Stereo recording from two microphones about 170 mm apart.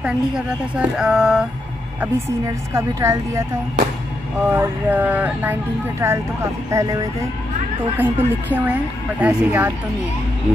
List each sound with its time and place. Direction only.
0.0 s speech: 5° right (ahead or behind)
2.0 s speech: 20° right (ahead or behind)
4.5 s speech: 10° right (ahead or behind)